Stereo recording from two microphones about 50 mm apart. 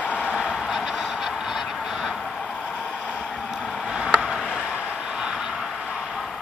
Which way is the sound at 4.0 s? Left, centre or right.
Centre.